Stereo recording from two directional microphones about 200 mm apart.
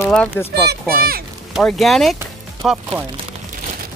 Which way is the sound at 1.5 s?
Centre (ahead or behind).